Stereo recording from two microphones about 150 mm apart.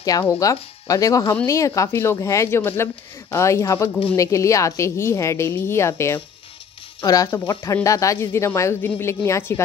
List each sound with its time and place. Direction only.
0.2 s speech: 20° left (ahead or behind)